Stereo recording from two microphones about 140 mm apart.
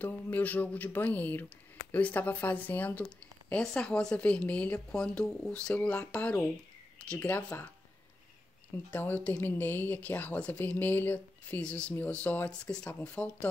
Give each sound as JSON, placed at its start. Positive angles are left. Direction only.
{"t": 0.0, "sound": "speech", "side_deg": 10}
{"t": 8.9, "sound": "speech", "side_deg": 10}